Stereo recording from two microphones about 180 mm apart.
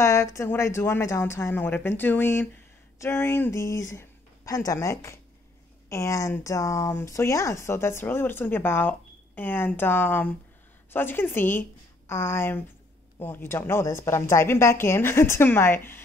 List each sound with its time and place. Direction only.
0.0 s speech: 15° left (ahead or behind)